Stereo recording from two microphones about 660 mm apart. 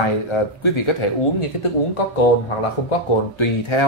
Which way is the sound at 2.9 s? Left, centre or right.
Left.